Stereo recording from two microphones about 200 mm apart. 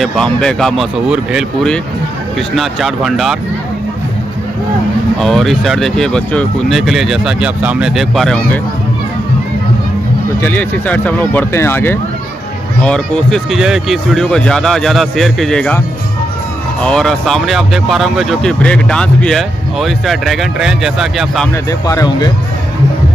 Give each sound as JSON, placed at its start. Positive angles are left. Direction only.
{"t": 0.0, "sound": "speech", "side_deg": 0}
{"t": 5.2, "sound": "speech", "side_deg": 0}
{"t": 10.4, "sound": "speech", "side_deg": 10}
{"t": 16.8, "sound": "speech", "side_deg": 0}
{"t": 21.8, "sound": "speech", "side_deg": 20}